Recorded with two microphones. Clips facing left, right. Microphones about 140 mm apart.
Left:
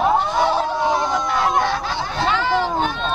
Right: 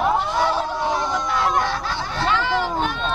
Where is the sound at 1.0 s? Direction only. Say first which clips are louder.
Left 2 dB; 20° left (ahead or behind).